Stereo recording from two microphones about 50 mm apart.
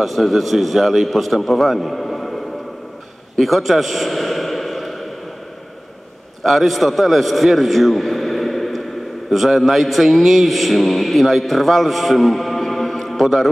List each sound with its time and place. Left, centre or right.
0.0 s a man's voice: centre
3.3 s a sound: centre
6.4 s a man's voice: centre